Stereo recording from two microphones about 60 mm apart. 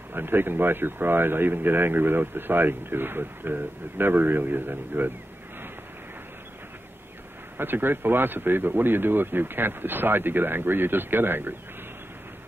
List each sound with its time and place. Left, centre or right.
0.1 s speech: right
7.5 s speech: right